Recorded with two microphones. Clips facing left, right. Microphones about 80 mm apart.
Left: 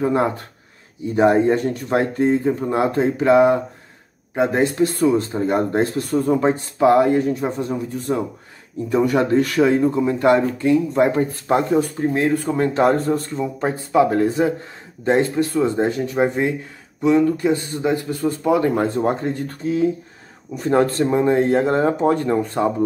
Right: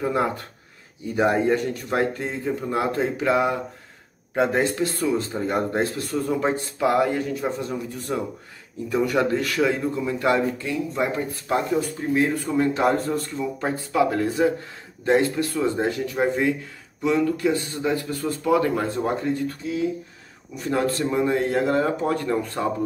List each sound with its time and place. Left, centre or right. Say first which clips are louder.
0.0 s speech: left 4 dB; left
4.6 s speech: left 5 dB; left